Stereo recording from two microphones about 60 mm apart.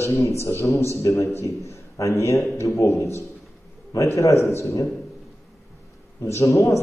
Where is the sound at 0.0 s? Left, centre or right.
Left.